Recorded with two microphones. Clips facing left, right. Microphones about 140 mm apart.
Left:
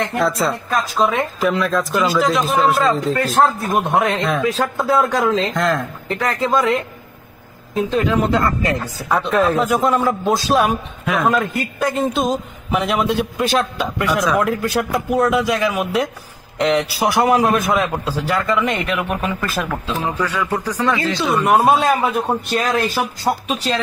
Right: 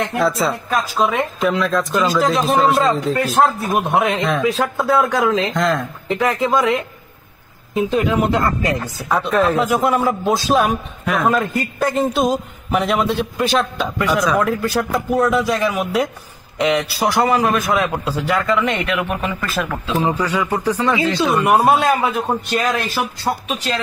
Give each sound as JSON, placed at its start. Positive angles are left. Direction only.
{"t": 0.1, "sound": "a man's voice", "side_deg": 0}
{"t": 7.7, "sound": "a woman's voice", "side_deg": -15}
{"t": 9.3, "sound": "a man's voice", "side_deg": 0}
{"t": 20.2, "sound": "a woman's voice", "side_deg": -10}
{"t": 23.2, "sound": "a man's voice", "side_deg": 5}